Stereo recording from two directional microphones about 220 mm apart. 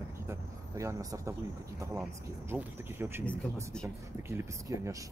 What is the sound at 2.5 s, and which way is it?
Speech, 10° right (ahead or behind).